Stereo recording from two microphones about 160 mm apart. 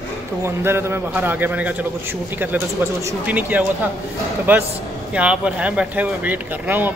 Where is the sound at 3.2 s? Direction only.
10° right (ahead or behind).